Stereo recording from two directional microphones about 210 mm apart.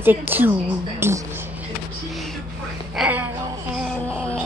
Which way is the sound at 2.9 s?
5° right (ahead or behind).